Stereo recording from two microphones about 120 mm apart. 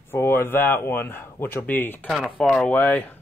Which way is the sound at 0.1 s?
20° left (ahead or behind).